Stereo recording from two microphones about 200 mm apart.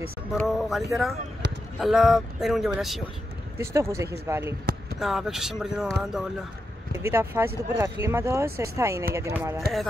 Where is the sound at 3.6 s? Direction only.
15° right (ahead or behind).